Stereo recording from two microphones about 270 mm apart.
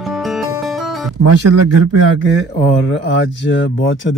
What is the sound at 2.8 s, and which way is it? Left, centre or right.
Speech, left.